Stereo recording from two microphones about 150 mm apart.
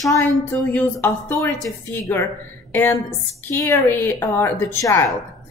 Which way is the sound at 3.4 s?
15° left (ahead or behind).